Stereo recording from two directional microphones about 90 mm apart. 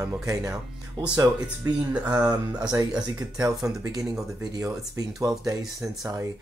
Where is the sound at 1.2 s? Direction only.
40° right (ahead or behind).